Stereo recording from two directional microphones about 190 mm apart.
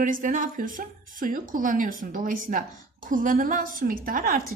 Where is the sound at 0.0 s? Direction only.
45° right (ahead or behind).